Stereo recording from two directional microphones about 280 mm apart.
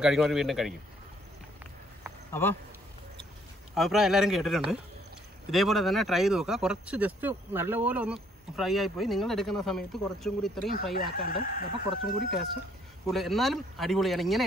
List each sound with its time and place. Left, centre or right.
0.0 s speech: centre
2.3 s speech: centre
3.7 s speech: centre
11.0 s speech: left
13.0 s speech: centre